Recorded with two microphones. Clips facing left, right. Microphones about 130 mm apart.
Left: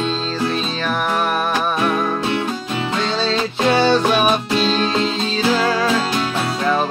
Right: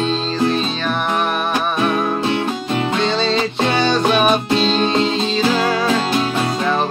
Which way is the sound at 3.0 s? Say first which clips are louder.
Even; 5° left (ahead or behind).